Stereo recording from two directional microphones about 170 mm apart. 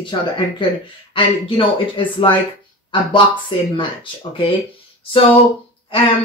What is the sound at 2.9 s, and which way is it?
Speech, 30° left (ahead or behind).